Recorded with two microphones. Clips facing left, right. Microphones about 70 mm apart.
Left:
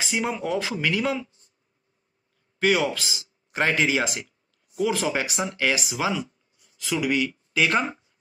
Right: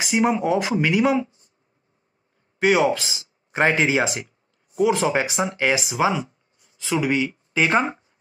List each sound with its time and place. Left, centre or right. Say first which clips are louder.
0.0 s speech: right 7 dB; centre
2.6 s speech: right 4 dB; right